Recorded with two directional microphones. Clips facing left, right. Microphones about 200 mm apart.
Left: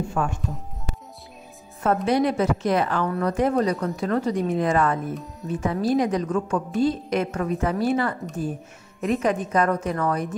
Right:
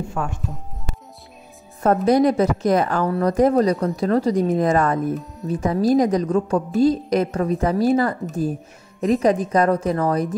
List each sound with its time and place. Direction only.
2.0 s a woman's voice: 40° right (ahead or behind)